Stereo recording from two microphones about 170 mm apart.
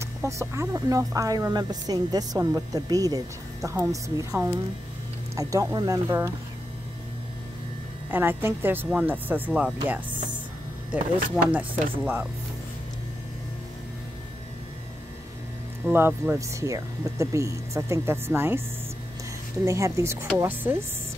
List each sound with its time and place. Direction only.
0.0 s speech: 15° right (ahead or behind)
8.1 s speech: 10° right (ahead or behind)
11.5 s speech: 10° right (ahead or behind)
15.8 s speech: 10° right (ahead or behind)
19.6 s speech: 15° right (ahead or behind)